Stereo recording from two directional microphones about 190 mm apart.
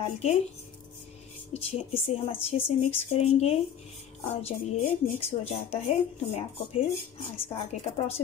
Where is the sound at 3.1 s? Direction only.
35° left (ahead or behind).